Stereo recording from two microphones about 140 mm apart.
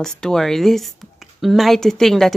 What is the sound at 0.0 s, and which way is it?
A woman's voice, 5° left (ahead or behind).